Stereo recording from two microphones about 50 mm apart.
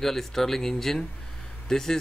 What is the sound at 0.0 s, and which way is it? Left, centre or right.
A man's voice, centre.